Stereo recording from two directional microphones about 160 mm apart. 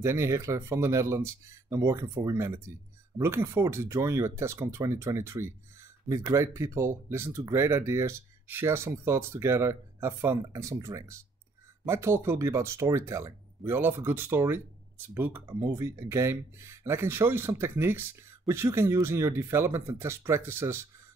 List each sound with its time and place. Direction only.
0.0 s speech: 15° right (ahead or behind)